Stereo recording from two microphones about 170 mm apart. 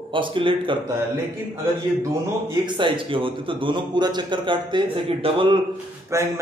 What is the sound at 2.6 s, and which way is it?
Speech, 30° right (ahead or behind).